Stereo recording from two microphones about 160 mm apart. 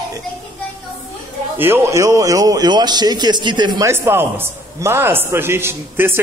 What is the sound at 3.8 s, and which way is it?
A man's voice, 15° right (ahead or behind).